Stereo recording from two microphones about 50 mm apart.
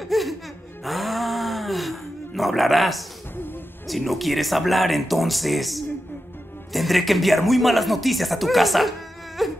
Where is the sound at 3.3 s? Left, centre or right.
Left.